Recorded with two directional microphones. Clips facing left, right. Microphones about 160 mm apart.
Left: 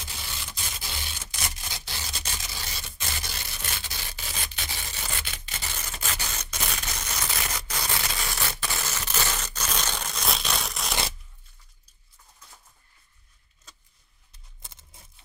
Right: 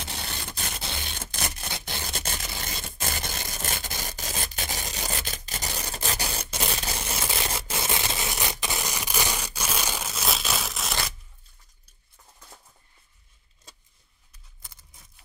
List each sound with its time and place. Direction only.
0.0 s a sound: 65° right (ahead or behind)
2.6 s rub: 50° right (ahead or behind)
6.5 s tearing: 30° right (ahead or behind); by 11.0 s centre (ahead or behind)
14.6 s tearing: 25° left (ahead or behind)